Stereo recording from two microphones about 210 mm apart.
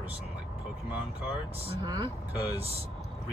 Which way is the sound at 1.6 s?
25° right (ahead or behind).